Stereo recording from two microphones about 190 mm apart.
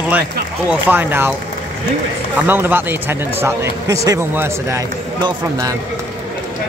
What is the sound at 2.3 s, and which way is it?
Speech, 10° right (ahead or behind).